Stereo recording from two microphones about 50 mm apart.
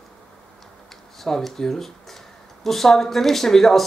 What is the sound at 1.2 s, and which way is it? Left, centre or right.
Speech, centre.